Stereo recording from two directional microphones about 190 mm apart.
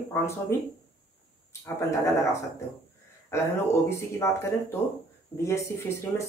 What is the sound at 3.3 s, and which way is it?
Speech, 15° left (ahead or behind).